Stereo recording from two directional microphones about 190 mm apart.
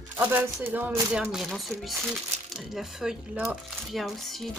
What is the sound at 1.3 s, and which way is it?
Speech, centre (ahead or behind).